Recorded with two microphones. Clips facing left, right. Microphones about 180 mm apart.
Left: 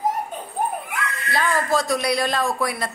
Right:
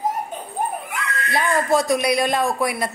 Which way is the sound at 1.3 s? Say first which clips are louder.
Right 2 dB; 20° right (ahead or behind).